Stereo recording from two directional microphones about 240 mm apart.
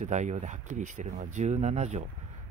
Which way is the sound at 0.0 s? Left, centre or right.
Right.